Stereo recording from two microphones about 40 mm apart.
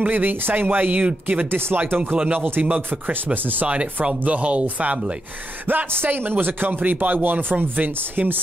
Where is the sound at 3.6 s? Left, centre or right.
Right.